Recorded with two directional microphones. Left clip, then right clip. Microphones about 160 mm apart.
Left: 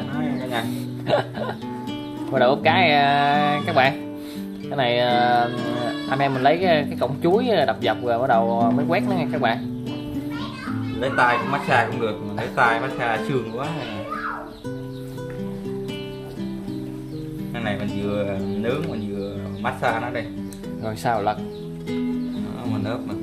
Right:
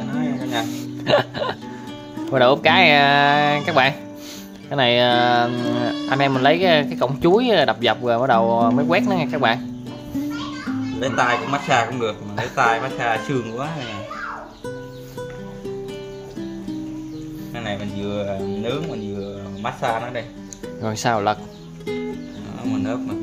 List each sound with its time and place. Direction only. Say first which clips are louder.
0.1 s music: right 2 dB; 20° right (ahead or behind)
1.0 s speech: right 4 dB; 30° right (ahead or behind)
11.0 s speech: left 1 dB; 25° right (ahead or behind)
17.6 s speech: left 1 dB; 10° right (ahead or behind)
20.8 s speech: right 2 dB; 30° right (ahead or behind)
22.7 s speech: right 4 dB; 20° right (ahead or behind)